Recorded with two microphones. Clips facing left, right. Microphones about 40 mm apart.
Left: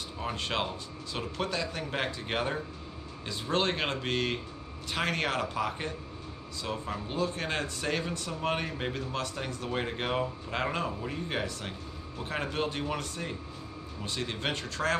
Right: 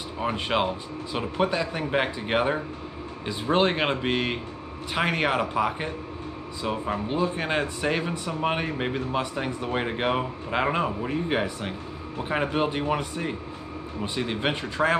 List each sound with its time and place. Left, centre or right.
0.2 s speech: right